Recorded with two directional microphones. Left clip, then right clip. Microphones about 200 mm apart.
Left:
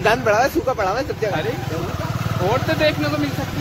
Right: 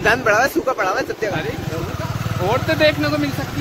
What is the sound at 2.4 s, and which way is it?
Speech, 45° right (ahead or behind).